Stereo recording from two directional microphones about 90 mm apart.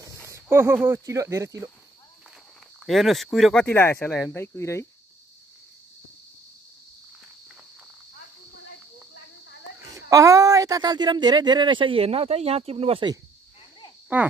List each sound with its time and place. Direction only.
0.3 s a sound: 30° right (ahead or behind)
0.7 s speech: 25° right (ahead or behind)
2.9 s speech: centre (ahead or behind)
3.6 s speech: 25° left (ahead or behind)
9.9 s speech: 35° right (ahead or behind); by 13.0 s 90° right